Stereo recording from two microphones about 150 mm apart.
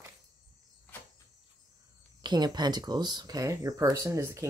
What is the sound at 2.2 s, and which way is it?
Speech, 30° right (ahead or behind).